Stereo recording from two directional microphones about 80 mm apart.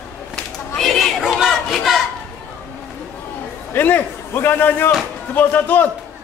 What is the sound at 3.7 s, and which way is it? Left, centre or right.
A man's voice, left.